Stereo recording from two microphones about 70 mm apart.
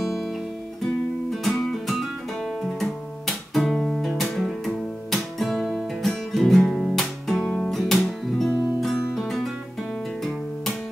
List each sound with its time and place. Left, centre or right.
0.0 s music: centre
1.3 s music: centre